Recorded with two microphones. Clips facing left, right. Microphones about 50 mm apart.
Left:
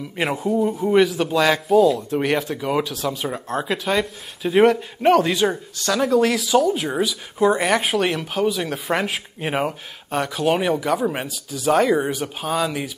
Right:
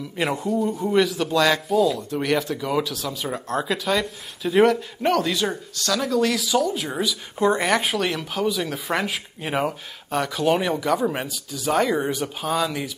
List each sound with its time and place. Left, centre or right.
0.2 s speech: centre